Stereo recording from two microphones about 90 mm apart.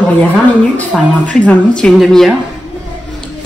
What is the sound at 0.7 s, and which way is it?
Speech, 15° left (ahead or behind).